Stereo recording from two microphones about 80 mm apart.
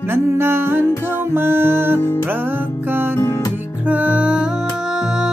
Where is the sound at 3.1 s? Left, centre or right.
Left.